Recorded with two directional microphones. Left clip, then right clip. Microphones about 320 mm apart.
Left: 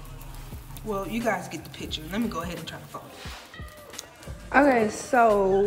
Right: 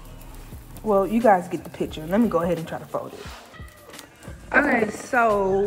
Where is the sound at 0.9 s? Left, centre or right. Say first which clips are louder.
Right 10 dB; centre.